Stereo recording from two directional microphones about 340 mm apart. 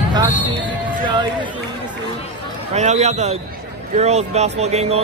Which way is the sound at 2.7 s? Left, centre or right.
Centre.